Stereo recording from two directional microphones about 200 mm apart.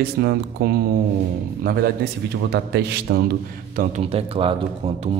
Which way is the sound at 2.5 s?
55° right (ahead or behind).